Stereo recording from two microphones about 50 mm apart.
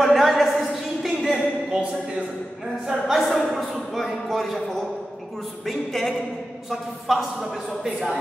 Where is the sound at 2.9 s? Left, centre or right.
Centre.